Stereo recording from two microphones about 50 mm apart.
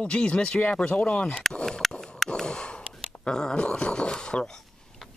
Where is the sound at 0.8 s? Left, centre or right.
Left.